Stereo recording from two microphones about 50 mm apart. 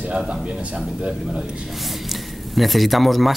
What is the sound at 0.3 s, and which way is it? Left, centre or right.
A man's voice, centre.